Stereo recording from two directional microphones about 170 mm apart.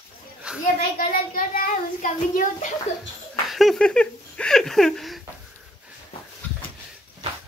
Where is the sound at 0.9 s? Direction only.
55° left (ahead or behind).